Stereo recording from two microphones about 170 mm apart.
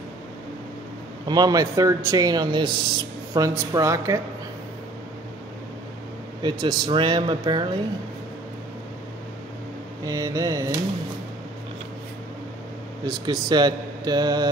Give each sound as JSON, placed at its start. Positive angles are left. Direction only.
{"t": 1.2, "sound": "speech", "side_deg": -25}
{"t": 6.4, "sound": "speech", "side_deg": -30}
{"t": 10.0, "sound": "speech", "side_deg": -20}
{"t": 13.0, "sound": "speech", "side_deg": -25}